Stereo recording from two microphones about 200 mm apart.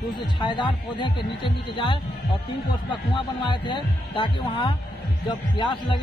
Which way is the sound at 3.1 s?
25° left (ahead or behind).